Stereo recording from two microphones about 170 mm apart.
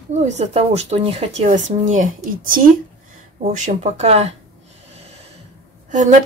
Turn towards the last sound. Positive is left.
turn(degrees=-45)  # may be behind; listen again after turning